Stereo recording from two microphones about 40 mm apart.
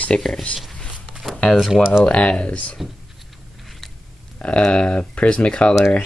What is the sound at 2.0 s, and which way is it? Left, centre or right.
Speech, left.